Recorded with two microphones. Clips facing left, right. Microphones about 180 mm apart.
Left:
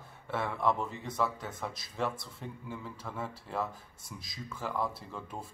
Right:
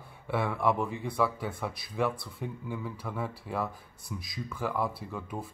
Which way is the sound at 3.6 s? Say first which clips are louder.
Right 2 dB; 25° left (ahead or behind).